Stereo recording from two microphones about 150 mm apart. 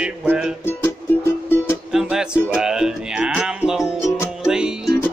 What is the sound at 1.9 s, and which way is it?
Music, 5° right (ahead or behind).